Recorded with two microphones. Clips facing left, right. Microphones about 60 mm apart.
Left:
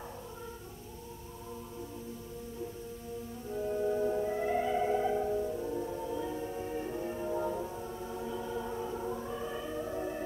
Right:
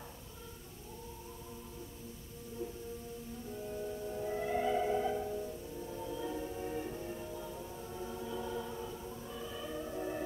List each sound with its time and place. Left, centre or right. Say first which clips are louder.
3.5 s brass instrument: left 10 dB; left
4.2 s music: left 4 dB; centre
5.6 s music: left 9 dB; left
5.9 s music: left 4 dB; centre
6.9 s music: left 7 dB; left
7.3 s music: left 10 dB; left
7.6 s music: left 4 dB; left
8.6 s music: left 6 dB; left
9.0 s music: left 7 dB; left
9.7 s music: left 1 dB; centre